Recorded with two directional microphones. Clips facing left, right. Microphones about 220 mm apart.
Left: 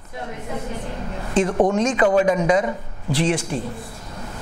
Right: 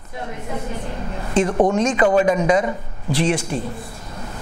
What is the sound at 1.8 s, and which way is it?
Speech, 20° right (ahead or behind).